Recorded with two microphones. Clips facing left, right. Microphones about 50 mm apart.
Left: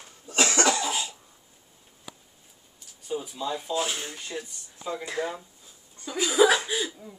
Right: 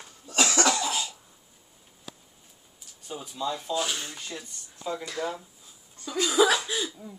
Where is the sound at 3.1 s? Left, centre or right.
Centre.